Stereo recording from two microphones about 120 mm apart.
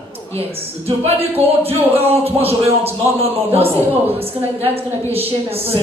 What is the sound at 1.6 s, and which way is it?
Speech, 55° right (ahead or behind).